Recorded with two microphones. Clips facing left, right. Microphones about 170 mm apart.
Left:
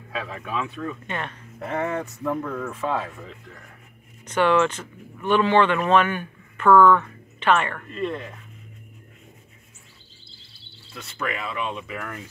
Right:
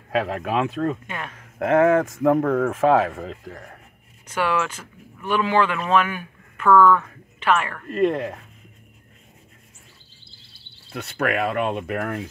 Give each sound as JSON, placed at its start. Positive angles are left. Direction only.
{"t": 0.1, "sound": "speech", "side_deg": -75}
{"t": 1.0, "sound": "speech", "side_deg": -5}
{"t": 1.4, "sound": "speech", "side_deg": -90}
{"t": 2.4, "sound": "speech", "side_deg": -75}
{"t": 4.3, "sound": "speech", "side_deg": -5}
{"t": 7.9, "sound": "speech", "side_deg": -65}
{"t": 10.9, "sound": "speech", "side_deg": -65}